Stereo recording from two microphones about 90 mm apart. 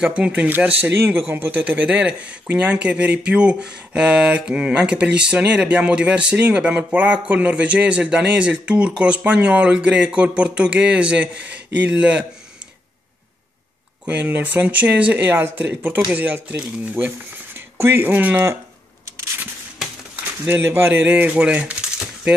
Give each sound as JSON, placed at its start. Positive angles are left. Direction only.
{"t": 0.0, "sound": "speech", "side_deg": -15}
{"t": 14.0, "sound": "speech", "side_deg": -20}
{"t": 20.4, "sound": "speech", "side_deg": -25}